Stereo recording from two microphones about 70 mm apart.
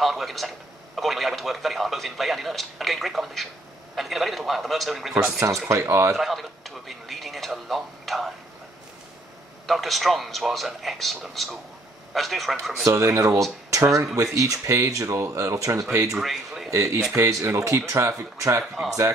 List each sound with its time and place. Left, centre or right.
0.0 s a sound: centre
0.9 s a man's voice: centre
5.7 s speech: right
6.1 s a sound: centre
9.7 s speech: centre
12.9 s speech: right
16.1 s a sound: centre
16.7 s speech: right
18.6 s speech: centre